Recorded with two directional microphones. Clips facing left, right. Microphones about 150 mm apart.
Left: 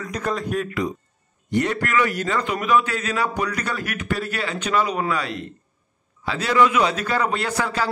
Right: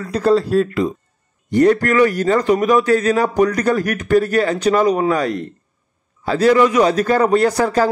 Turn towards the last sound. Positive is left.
turn(degrees=-40)  # may be behind; listen again after turning